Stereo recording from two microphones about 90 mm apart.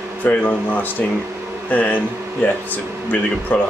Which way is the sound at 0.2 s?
20° left (ahead or behind).